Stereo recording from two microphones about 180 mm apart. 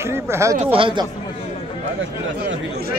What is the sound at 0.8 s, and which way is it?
Speech, 30° right (ahead or behind).